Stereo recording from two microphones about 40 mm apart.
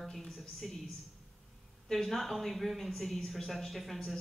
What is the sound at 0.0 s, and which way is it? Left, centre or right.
Speech, centre.